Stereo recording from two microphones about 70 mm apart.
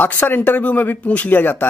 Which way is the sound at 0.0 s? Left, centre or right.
Left.